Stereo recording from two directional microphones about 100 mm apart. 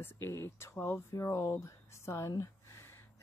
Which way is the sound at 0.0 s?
25° left (ahead or behind).